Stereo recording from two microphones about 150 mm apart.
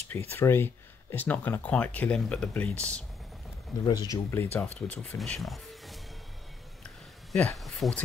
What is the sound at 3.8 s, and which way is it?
Speech, 30° left (ahead or behind).